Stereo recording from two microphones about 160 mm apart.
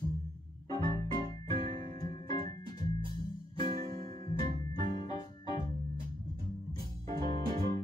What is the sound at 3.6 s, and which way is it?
Music, 25° left (ahead or behind).